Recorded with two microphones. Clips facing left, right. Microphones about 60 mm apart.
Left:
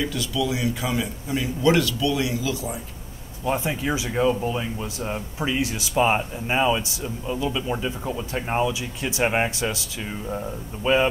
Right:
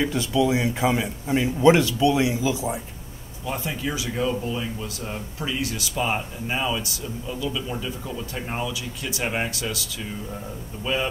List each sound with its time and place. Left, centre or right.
0.0 s a man's voice: right
3.4 s speech: left